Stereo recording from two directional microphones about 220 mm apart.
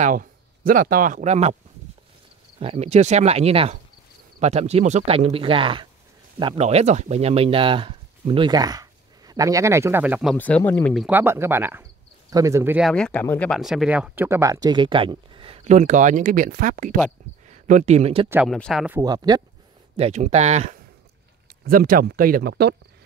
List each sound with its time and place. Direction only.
0.0 s speech: 40° right (ahead or behind)
2.6 s speech: 30° right (ahead or behind); by 10.3 s 5° right (ahead or behind)
10.3 s speech: 5° left (ahead or behind)
11.1 s speech: 10° right (ahead or behind)
12.9 s speech: 5° left (ahead or behind); by 18.3 s 25° right (ahead or behind)
18.3 s speech: centre (ahead or behind)
18.9 s speech: 20° right (ahead or behind)
20.0 s speech: 30° right (ahead or behind)
21.6 s speech: 40° right (ahead or behind)